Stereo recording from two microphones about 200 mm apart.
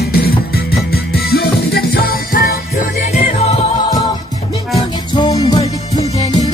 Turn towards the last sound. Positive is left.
turn(degrees=25)  # may be behind; listen again after turning